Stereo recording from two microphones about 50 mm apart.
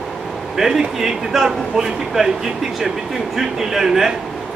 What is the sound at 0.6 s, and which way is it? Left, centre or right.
A man's voice, centre.